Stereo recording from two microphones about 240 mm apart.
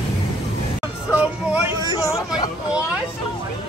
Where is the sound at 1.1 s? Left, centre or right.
Centre.